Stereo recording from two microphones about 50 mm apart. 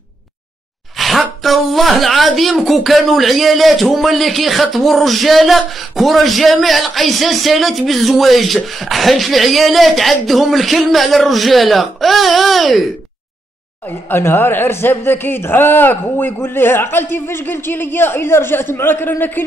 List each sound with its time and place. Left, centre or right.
0.9 s speech: centre
13.8 s a man's voice: left